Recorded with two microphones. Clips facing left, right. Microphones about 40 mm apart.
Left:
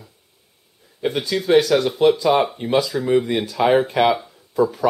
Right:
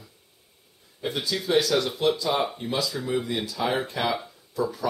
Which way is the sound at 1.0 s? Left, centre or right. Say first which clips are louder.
Left 7 dB; left.